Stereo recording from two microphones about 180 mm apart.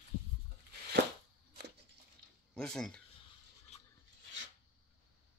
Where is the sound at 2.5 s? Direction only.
5° left (ahead or behind).